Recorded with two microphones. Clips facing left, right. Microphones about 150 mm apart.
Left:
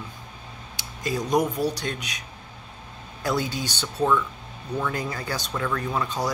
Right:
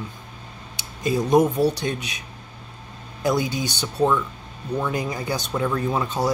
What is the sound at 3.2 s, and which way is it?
Speech, 20° right (ahead or behind).